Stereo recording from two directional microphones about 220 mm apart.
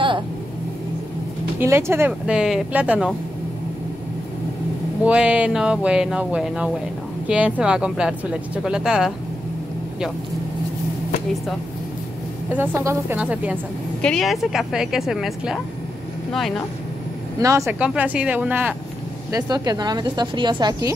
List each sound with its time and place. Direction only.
1.6 s speech: 10° right (ahead or behind)
5.0 s speech: 5° right (ahead or behind)
12.5 s speech: 10° right (ahead or behind)
17.4 s speech: 15° right (ahead or behind)
19.3 s speech: 15° right (ahead or behind)